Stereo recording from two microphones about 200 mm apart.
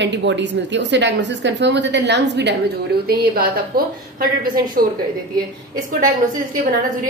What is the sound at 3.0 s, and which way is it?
A woman's voice, 50° right (ahead or behind).